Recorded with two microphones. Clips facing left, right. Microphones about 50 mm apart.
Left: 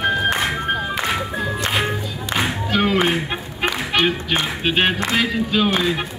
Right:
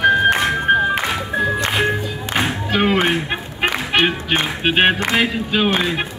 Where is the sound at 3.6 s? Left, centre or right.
Right.